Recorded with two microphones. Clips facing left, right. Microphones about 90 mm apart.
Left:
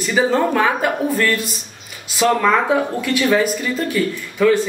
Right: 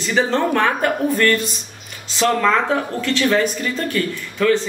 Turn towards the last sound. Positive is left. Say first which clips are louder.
# left 2 dB
turn(degrees=10)  # may be behind; listen again after turning